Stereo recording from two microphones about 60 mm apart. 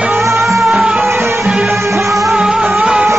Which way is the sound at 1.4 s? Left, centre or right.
Centre.